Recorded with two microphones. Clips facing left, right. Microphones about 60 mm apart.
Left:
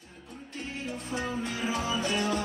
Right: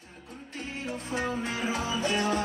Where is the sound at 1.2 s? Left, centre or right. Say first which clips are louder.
Right 1 dB; centre.